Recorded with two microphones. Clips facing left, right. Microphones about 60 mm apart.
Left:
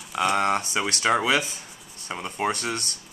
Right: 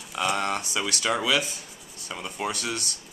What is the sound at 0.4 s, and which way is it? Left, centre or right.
Speech, left.